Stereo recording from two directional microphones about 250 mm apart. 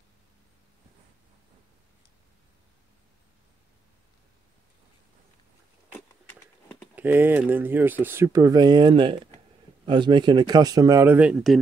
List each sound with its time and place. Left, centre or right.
7.0 s a man's voice: centre